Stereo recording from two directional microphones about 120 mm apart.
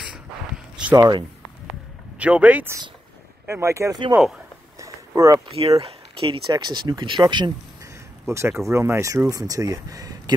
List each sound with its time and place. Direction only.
0.9 s speech: 30° right (ahead or behind)
2.1 s speech: 10° right (ahead or behind)
3.4 s speech: 20° right (ahead or behind)
4.7 s a sound: 25° right (ahead or behind)
5.5 s speech: 55° right (ahead or behind)
6.5 s speech: 40° right (ahead or behind)
7.8 s speech: 25° right (ahead or behind)